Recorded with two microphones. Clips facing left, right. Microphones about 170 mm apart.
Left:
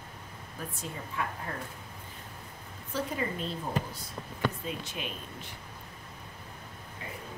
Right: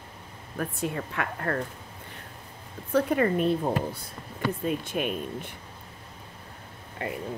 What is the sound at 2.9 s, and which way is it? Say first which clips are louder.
Speech: right 10 dB; 60° right (ahead or behind).